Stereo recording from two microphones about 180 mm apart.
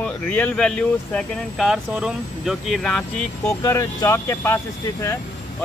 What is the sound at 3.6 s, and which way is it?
Speech, 15° left (ahead or behind).